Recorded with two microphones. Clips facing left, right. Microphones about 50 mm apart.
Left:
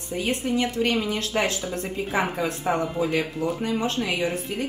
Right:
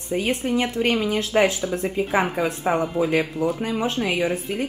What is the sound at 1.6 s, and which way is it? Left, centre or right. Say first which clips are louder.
Speech: right 5 dB; centre.